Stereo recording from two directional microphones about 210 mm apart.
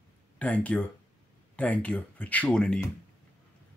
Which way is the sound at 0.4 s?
5° left (ahead or behind).